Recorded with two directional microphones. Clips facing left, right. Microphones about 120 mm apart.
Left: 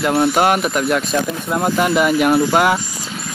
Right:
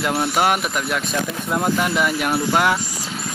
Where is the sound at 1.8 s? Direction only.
5° left (ahead or behind).